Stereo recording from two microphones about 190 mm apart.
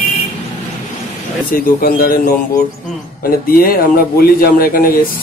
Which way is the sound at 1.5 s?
50° left (ahead or behind).